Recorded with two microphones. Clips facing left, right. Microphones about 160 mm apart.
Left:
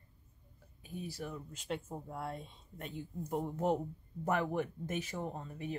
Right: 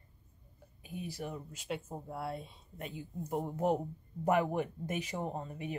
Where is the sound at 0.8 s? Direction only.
15° right (ahead or behind).